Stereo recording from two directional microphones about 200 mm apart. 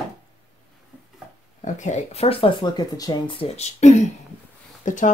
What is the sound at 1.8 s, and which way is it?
Speech, 35° left (ahead or behind).